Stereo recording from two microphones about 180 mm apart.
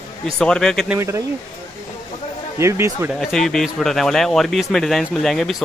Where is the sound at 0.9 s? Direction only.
15° right (ahead or behind).